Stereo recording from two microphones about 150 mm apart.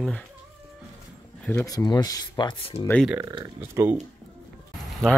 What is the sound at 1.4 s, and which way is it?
Speech, 20° left (ahead or behind).